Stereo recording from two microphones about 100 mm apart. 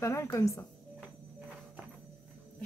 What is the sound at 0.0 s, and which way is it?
Speech, 30° left (ahead or behind).